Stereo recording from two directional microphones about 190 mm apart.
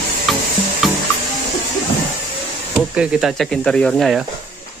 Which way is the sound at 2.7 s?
5° right (ahead or behind).